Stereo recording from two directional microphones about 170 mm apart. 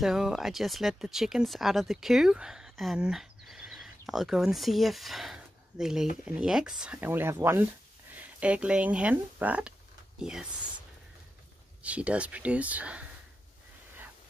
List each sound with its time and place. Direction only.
0.0 s speech: centre (ahead or behind)
11.8 s speech: 10° right (ahead or behind)